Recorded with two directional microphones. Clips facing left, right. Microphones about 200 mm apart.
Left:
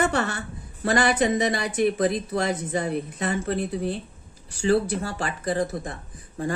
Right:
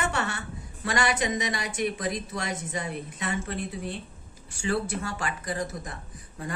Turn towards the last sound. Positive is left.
turn(degrees=30)  # may be behind; listen again after turning